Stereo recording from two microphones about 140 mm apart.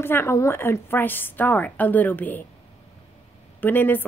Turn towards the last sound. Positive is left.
turn(degrees=15)  # may be behind; listen again after turning